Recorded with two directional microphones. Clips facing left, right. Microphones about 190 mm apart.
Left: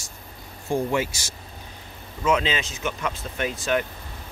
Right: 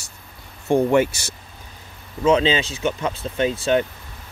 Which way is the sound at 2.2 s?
30° right (ahead or behind).